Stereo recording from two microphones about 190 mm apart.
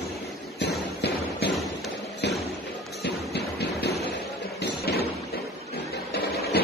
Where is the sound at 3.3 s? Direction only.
60° left (ahead or behind).